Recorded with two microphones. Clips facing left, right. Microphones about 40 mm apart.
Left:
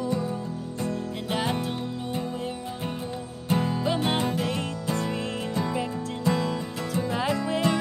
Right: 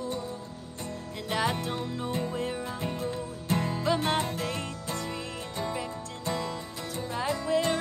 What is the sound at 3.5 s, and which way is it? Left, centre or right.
Music, centre.